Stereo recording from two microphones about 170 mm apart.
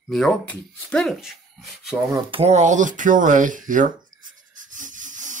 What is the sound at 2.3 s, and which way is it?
Speech, 40° right (ahead or behind).